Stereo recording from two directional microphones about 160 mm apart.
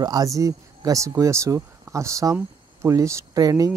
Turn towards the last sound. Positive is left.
turn(degrees=-20)  # may be behind; listen again after turning